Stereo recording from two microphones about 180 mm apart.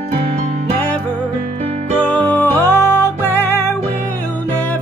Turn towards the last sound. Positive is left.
turn(degrees=10)  # may be behind; listen again after turning